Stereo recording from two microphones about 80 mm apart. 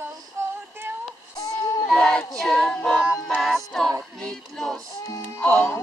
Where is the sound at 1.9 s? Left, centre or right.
Centre.